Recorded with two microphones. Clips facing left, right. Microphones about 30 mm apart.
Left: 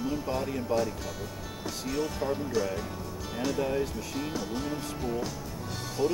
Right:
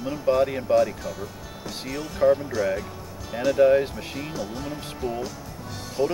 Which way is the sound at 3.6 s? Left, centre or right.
Right.